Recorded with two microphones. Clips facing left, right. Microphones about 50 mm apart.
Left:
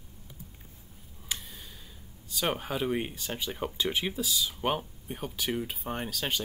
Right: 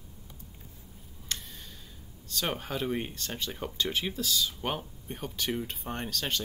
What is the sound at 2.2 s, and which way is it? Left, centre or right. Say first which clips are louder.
Speech: left 2 dB; centre.